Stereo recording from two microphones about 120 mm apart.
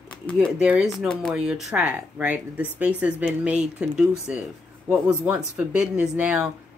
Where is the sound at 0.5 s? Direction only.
10° right (ahead or behind).